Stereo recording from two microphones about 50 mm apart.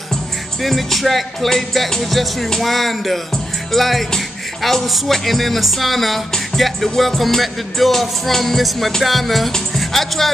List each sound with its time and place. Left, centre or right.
0.1 s music: centre